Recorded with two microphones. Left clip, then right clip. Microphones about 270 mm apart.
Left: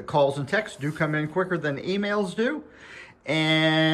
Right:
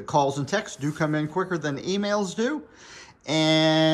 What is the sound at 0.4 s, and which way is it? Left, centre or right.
Speech, centre.